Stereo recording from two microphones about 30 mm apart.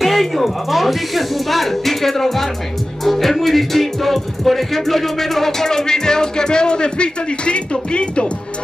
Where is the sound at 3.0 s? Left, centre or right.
Centre; by 8.3 s left.